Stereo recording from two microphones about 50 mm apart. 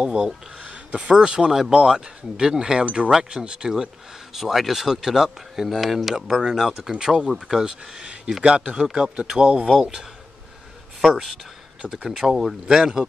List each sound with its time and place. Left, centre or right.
0.0 s speech: centre
0.6 s a sound: right
1.1 s speech: centre
6.1 s speech: centre
11.0 s speech: centre